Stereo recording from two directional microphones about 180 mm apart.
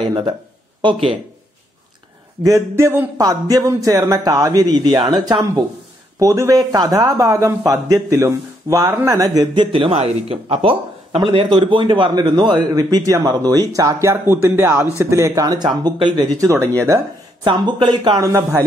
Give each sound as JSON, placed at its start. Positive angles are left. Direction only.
{"t": 0.0, "sound": "speech", "side_deg": -25}
{"t": 2.4, "sound": "a man's voice", "side_deg": -15}
{"t": 17.5, "sound": "a man's voice", "side_deg": -30}